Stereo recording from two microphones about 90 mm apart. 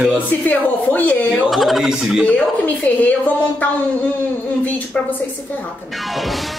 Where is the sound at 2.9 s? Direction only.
20° left (ahead or behind).